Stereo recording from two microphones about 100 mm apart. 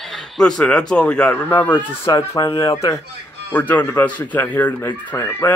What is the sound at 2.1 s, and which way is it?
Speech, 35° left (ahead or behind).